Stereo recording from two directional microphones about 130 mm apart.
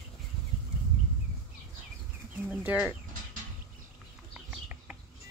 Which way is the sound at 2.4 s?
10° right (ahead or behind).